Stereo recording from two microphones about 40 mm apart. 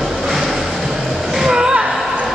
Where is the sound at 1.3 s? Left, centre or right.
Centre.